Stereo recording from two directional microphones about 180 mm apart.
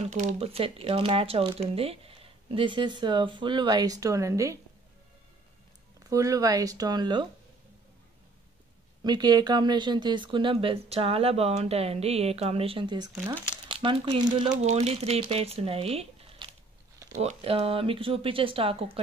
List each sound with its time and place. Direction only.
0.0 s speech: 40° right (ahead or behind); by 4.6 s 15° right (ahead or behind)
6.0 s speech: 20° right (ahead or behind)
9.0 s speech: 20° right (ahead or behind)